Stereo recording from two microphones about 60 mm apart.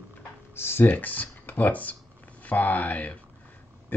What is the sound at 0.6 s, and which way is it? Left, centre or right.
Speech, left.